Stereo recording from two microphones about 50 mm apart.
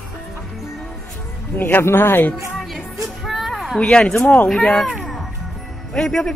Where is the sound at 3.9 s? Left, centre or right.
Left.